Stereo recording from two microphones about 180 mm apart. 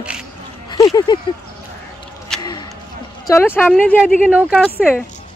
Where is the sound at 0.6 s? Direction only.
20° left (ahead or behind).